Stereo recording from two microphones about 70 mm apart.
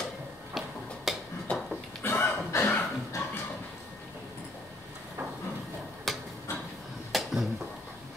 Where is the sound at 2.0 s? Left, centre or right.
Left.